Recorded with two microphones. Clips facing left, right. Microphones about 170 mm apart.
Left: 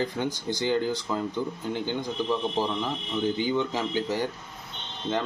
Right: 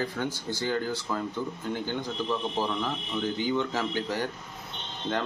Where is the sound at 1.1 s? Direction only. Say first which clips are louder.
Even; 5° left (ahead or behind).